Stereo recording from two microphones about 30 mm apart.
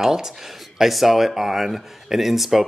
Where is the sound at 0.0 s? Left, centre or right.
Centre.